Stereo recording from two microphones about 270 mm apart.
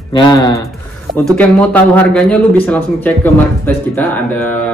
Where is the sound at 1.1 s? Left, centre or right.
Centre.